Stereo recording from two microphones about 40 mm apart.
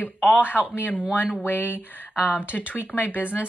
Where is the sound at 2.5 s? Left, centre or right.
Left.